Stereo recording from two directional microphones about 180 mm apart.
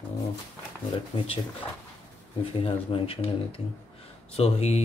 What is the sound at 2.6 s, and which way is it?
Speech, 30° left (ahead or behind).